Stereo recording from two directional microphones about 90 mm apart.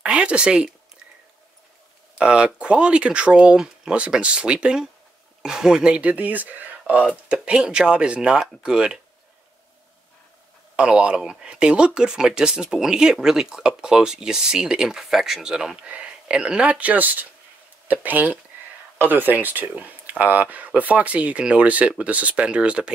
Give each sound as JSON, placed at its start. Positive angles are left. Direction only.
{"t": 0.0, "sound": "speech", "side_deg": -10}
{"t": 2.1, "sound": "speech", "side_deg": -10}
{"t": 10.8, "sound": "speech", "side_deg": -10}